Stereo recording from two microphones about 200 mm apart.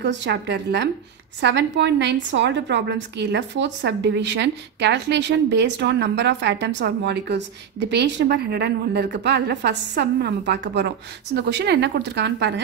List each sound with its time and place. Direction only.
0.0 s a woman's voice: 60° right (ahead or behind)